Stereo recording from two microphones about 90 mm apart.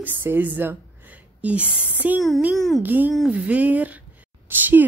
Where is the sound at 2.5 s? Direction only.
Centre (ahead or behind).